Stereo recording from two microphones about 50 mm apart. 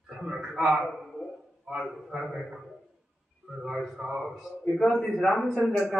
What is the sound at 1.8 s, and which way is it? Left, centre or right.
A man's voice, centre.